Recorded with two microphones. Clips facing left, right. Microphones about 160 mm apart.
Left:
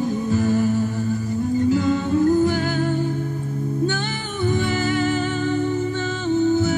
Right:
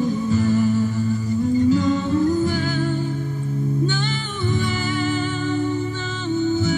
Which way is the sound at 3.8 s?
50° left (ahead or behind).